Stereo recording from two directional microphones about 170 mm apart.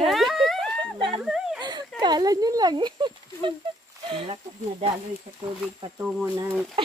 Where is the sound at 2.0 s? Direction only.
25° right (ahead or behind).